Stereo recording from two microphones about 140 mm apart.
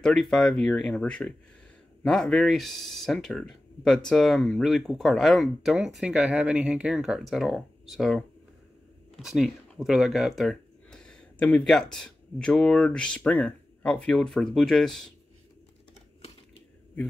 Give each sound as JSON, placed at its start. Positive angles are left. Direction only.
{"t": 0.0, "sound": "speech", "side_deg": 5}